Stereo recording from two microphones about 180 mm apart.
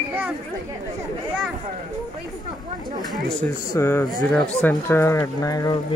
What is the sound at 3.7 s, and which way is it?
Speech, 15° left (ahead or behind).